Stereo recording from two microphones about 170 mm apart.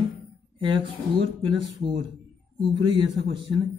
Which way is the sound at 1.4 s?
30° right (ahead or behind).